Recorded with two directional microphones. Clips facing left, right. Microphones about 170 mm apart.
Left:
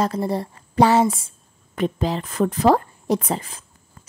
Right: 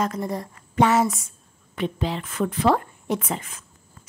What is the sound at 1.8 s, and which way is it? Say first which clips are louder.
A woman's voice: left 4 dB; 40° left (ahead or behind).